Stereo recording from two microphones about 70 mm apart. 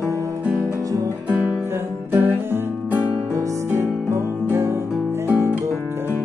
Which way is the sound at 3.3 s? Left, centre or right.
Right.